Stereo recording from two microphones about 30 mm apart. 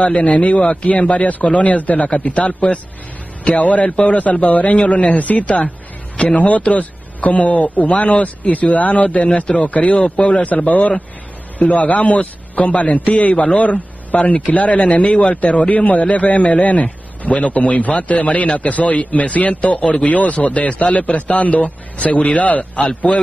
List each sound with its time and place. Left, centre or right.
0.0 s a man's voice: left
2.0 s a man's voice: left
3.5 s a man's voice: left
10.0 s a man's voice: left
10.3 s a man's voice: left
22.2 s a man's voice: left
22.8 s a man's voice: left